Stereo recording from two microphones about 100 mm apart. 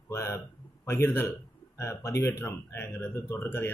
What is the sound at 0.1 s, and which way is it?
Speech, 30° left (ahead or behind).